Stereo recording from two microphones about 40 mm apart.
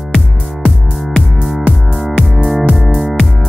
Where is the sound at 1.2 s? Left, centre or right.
Right.